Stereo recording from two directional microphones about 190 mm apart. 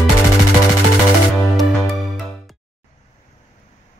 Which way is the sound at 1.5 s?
Centre (ahead or behind).